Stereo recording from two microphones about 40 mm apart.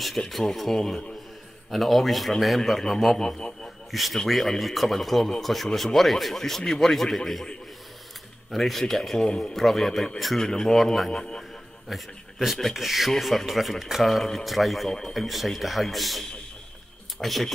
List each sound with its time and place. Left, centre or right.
0.3 s a man's voice: centre
3.2 s a man's voice: centre
3.9 s a man's voice: centre
8.5 s a man's voice: centre
10.4 s a man's voice: centre
11.9 s a man's voice: centre
14.9 s a man's voice: centre
15.1 s speech: centre